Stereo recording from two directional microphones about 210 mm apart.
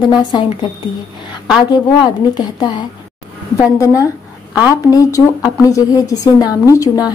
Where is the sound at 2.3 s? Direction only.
20° left (ahead or behind).